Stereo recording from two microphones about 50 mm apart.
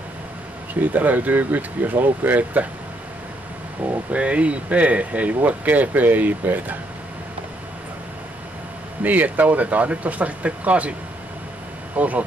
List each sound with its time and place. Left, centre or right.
0.7 s speech: right
4.1 s speech: right
9.0 s speech: right